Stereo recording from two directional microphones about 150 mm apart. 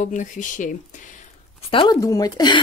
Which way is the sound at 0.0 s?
55° left (ahead or behind).